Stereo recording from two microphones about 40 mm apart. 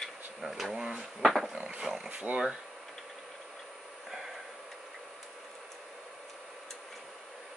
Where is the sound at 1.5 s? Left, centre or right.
Right.